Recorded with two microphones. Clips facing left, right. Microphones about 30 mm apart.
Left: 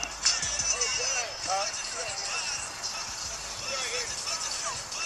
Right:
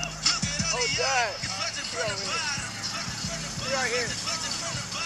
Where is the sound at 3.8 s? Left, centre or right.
Right.